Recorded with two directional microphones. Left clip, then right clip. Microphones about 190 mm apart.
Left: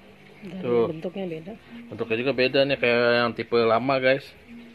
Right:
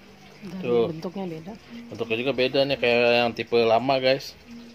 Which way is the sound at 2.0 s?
25° left (ahead or behind).